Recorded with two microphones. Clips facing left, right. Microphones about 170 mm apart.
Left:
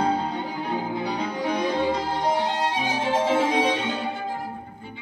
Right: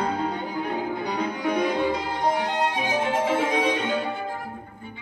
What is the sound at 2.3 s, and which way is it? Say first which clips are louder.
Violin: even; 50° right (ahead or behind).